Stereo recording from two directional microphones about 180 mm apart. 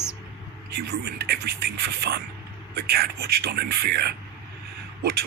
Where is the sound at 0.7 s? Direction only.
60° right (ahead or behind).